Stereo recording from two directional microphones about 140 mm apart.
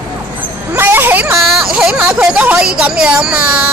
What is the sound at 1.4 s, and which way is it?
Speech, centre (ahead or behind).